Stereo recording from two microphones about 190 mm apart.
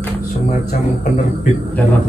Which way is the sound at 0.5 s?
45° left (ahead or behind).